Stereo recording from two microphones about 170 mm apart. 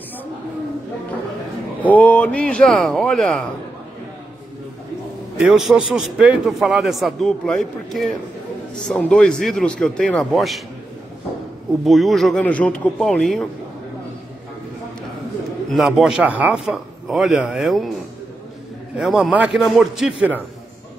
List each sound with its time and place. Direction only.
1.8 s a man's voice: 10° left (ahead or behind)
5.4 s a man's voice: centre (ahead or behind)
11.8 s a man's voice: centre (ahead or behind)
15.7 s a man's voice: centre (ahead or behind)
18.9 s a man's voice: centre (ahead or behind)